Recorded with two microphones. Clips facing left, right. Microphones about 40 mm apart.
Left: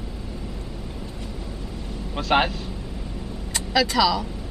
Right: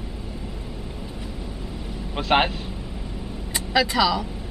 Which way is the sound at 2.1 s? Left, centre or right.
Right.